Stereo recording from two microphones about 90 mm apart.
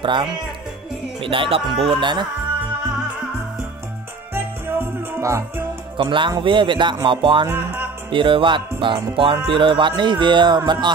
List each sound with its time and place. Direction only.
0.0 s speech: 65° right (ahead or behind)
1.2 s music: 75° right (ahead or behind)
4.3 s music: 25° right (ahead or behind)
5.9 s speech: 65° right (ahead or behind)
7.1 s music: 70° right (ahead or behind)
7.4 s speech: 20° right (ahead or behind)
8.1 s music: 70° right (ahead or behind)
9.5 s speech: 70° right (ahead or behind)